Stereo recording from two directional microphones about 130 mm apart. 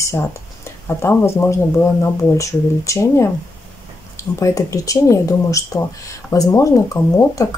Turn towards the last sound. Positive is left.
turn(degrees=25)  # may be behind; listen again after turning